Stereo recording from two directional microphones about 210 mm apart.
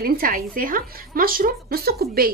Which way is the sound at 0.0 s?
45° right (ahead or behind).